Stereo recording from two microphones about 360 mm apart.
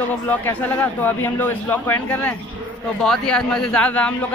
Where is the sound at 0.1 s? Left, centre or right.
Centre.